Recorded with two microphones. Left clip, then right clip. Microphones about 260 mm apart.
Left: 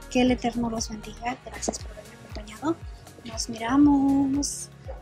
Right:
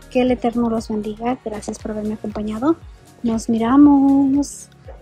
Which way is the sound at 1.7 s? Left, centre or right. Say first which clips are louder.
Right 1 dB; left.